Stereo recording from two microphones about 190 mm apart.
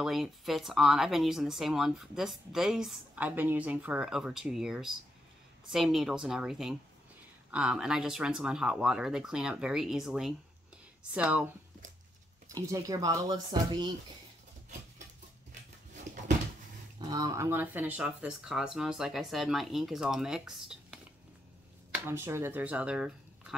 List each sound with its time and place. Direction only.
0.0 s speech: centre (ahead or behind)
12.5 s speech: 15° right (ahead or behind)
16.1 s a sound: 40° right (ahead or behind)
17.1 s speech: 20° right (ahead or behind)